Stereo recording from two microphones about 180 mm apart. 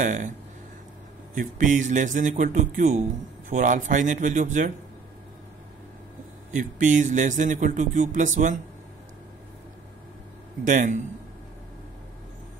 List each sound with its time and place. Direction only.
0.0 s a man's voice: 45° right (ahead or behind)
1.3 s a man's voice: 45° right (ahead or behind)
6.5 s a man's voice: 45° right (ahead or behind)
10.6 s a man's voice: 45° right (ahead or behind)